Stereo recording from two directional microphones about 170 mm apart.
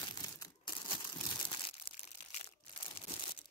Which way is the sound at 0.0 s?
25° left (ahead or behind).